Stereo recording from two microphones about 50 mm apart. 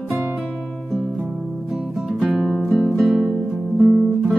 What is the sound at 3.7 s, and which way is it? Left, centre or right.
Music, right.